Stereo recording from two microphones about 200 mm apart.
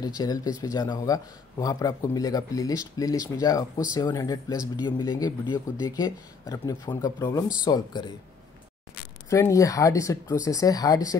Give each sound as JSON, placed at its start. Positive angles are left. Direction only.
{"t": 0.2, "sound": "speech", "side_deg": 20}
{"t": 9.3, "sound": "speech", "side_deg": 15}